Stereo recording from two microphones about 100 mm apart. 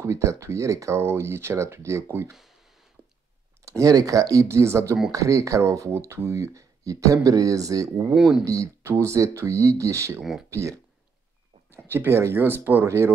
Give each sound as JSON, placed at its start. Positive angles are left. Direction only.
{"t": 0.0, "sound": "speech", "side_deg": -30}
{"t": 3.0, "sound": "clicking", "side_deg": -15}
{"t": 3.6, "sound": "speech", "side_deg": -35}
{"t": 8.1, "sound": "speech", "side_deg": -5}
{"t": 8.5, "sound": "speech", "side_deg": -30}